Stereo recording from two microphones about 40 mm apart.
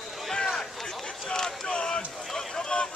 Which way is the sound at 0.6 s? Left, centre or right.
Centre.